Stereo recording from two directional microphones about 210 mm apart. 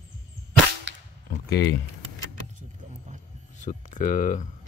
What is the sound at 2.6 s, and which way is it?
Vehicle, 35° right (ahead or behind).